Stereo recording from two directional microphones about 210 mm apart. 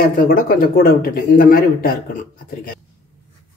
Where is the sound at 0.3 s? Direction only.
45° left (ahead or behind).